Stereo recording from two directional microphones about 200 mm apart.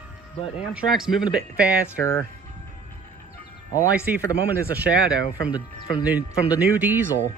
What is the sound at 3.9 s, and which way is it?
Speech, 5° right (ahead or behind).